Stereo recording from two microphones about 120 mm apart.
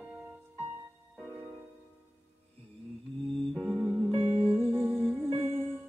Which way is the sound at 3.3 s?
Centre (ahead or behind).